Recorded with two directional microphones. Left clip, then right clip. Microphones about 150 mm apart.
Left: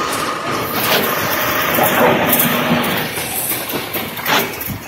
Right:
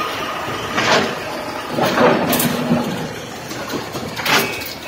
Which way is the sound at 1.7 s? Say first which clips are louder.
Even; 50° right (ahead or behind).